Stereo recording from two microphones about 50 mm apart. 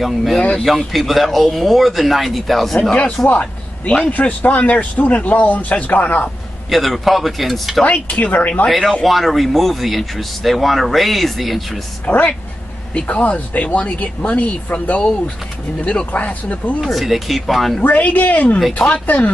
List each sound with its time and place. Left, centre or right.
0.0 s speech: centre
2.9 s a man's voice: centre
6.7 s speech: centre
7.8 s speech: left
8.6 s speech: centre
12.1 s speech: left
16.8 s speech: centre
17.8 s speech: left